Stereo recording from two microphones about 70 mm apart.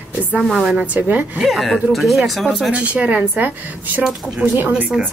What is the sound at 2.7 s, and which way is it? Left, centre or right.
A woman's voice, centre.